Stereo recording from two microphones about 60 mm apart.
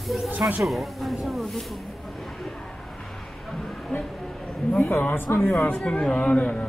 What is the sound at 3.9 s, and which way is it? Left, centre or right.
Speech, left.